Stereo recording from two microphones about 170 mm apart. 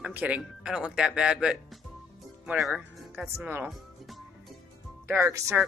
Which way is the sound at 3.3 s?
10° right (ahead or behind).